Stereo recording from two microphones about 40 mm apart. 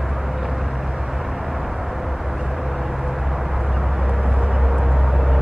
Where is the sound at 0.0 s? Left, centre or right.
Centre.